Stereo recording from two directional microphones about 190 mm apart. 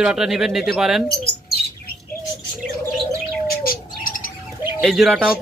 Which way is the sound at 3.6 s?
45° left (ahead or behind).